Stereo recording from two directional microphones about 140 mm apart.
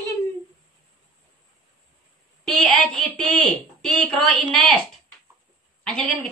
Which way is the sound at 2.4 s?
Centre (ahead or behind).